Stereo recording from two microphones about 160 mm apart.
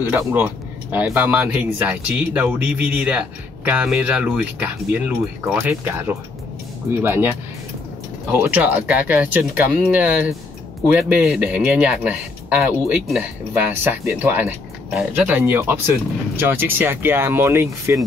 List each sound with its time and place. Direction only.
0.0 s speech: 10° right (ahead or behind)